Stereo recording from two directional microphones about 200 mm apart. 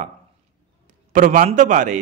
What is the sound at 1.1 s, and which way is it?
Speech, 40° right (ahead or behind).